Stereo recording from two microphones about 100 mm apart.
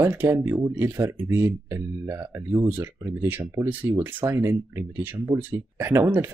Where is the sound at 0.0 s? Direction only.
25° right (ahead or behind).